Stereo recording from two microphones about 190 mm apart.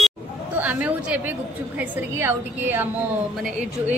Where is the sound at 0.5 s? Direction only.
10° right (ahead or behind).